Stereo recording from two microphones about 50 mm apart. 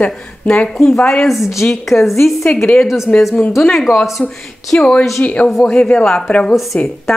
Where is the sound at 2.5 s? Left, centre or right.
Left.